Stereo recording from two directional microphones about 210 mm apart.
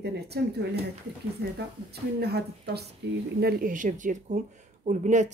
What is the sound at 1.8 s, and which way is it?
Speech, 50° right (ahead or behind).